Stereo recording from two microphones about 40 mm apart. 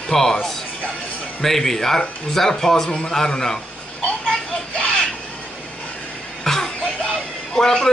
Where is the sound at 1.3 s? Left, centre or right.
Centre.